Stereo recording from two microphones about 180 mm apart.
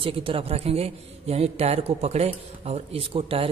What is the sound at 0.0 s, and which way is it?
A man's voice, 30° right (ahead or behind).